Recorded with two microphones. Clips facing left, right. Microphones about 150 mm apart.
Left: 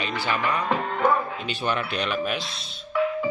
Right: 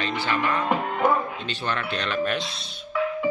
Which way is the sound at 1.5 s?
10° left (ahead or behind).